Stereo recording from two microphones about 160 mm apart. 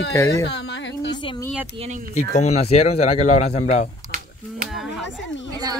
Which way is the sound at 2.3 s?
45° left (ahead or behind).